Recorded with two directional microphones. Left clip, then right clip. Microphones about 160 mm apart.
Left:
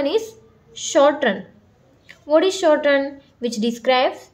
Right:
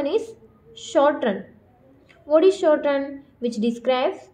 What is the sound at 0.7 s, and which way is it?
A woman's voice, 20° left (ahead or behind).